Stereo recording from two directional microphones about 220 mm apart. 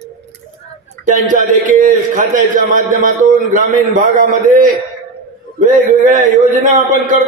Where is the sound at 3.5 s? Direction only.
40° right (ahead or behind).